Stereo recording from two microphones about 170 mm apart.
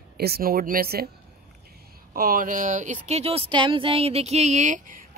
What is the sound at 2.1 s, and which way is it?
Speech, 60° right (ahead or behind).